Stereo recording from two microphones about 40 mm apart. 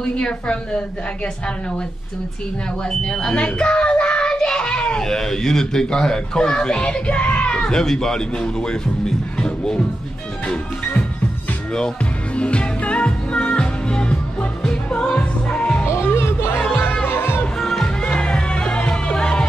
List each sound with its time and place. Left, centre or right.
0.2 s a child's voice: left
2.8 s a child's voice: left
7.7 s speech: centre
12.4 s music: left
16.1 s music: left
17.1 s music: left
17.6 s music: centre
17.8 s music: left